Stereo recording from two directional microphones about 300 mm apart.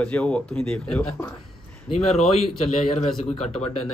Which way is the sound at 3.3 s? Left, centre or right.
Centre.